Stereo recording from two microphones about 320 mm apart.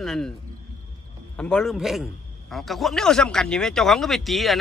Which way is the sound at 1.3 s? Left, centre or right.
Centre.